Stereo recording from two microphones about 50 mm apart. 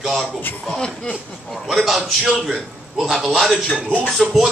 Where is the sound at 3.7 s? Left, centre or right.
Right.